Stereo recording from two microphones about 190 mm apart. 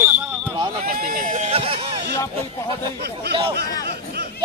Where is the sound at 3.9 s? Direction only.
60° right (ahead or behind).